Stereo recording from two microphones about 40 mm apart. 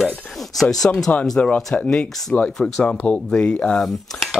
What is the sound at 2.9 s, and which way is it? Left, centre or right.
Speech, left.